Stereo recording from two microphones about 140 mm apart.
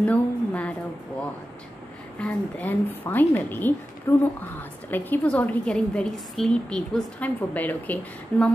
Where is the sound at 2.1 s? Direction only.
10° left (ahead or behind).